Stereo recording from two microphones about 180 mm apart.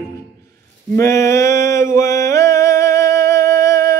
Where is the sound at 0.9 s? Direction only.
15° left (ahead or behind).